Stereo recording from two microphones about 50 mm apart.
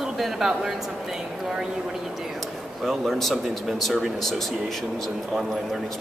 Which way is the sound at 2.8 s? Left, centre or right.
Centre.